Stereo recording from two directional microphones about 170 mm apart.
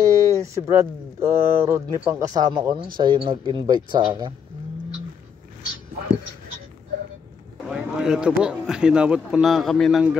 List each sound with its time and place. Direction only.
0.0 s speech: 20° right (ahead or behind)
7.6 s speech: 5° right (ahead or behind)